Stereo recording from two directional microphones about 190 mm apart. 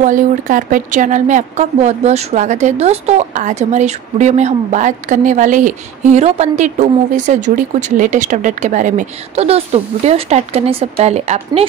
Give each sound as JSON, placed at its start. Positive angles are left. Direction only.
{"t": 0.0, "sound": "a woman's voice", "side_deg": -45}